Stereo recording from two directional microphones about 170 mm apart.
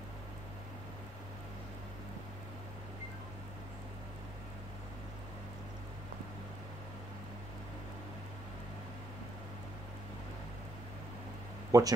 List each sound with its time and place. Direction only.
11.7 s speech: 20° right (ahead or behind)